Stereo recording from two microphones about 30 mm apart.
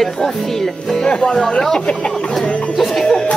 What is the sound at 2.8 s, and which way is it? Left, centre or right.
Music, centre.